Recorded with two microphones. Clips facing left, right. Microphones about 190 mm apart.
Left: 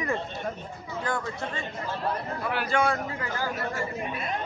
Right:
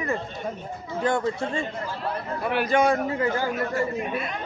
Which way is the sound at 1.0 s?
25° right (ahead or behind).